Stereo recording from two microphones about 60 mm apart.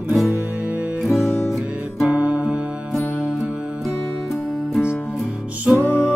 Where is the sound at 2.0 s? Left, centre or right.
Right.